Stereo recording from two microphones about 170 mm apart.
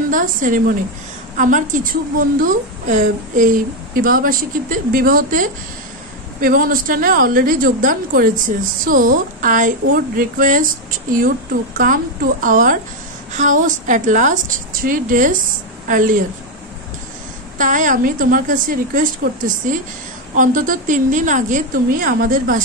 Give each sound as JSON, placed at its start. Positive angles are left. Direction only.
{"t": 0.1, "sound": "a woman's voice", "side_deg": -50}
{"t": 17.6, "sound": "a woman's voice", "side_deg": -50}